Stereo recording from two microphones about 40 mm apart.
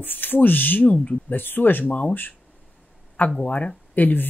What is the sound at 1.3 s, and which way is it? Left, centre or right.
Speech, left.